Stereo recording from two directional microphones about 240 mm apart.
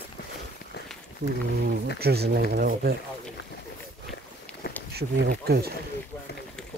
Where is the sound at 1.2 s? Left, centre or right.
Right.